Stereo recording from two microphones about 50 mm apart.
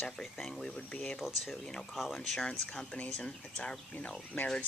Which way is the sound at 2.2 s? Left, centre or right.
Centre.